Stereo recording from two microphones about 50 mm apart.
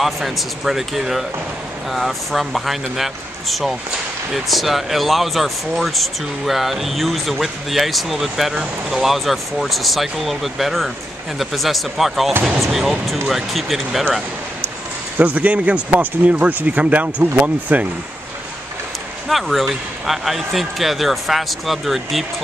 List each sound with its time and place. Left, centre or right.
0.0 s speech: centre
15.1 s speech: right
19.2 s speech: centre